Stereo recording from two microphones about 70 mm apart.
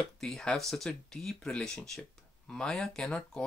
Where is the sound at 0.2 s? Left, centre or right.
Centre.